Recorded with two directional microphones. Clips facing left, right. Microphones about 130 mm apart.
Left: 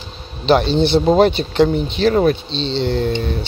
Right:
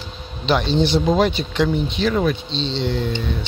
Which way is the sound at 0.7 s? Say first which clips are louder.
Left 2 dB; 30° left (ahead or behind).